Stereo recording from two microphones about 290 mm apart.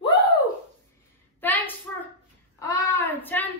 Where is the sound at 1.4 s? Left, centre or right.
Centre.